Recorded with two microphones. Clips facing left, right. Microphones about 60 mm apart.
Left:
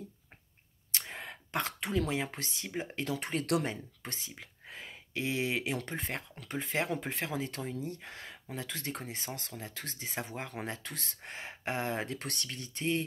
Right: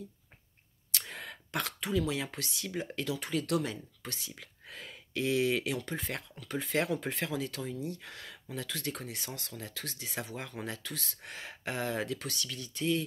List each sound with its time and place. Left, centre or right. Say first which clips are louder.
0.9 s speech: even; left